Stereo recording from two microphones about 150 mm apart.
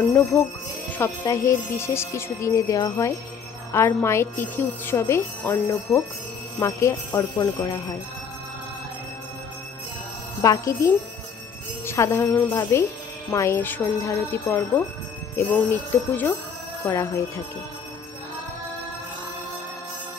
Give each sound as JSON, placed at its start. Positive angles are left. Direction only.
{"t": 0.0, "sound": "speech", "side_deg": 20}
{"t": 10.4, "sound": "speech", "side_deg": 20}